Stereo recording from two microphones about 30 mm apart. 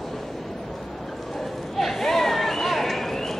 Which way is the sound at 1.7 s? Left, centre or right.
Centre.